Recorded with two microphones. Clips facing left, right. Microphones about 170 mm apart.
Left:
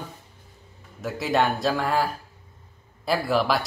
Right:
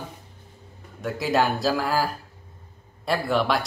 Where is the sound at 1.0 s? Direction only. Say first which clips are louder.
Even; centre (ahead or behind).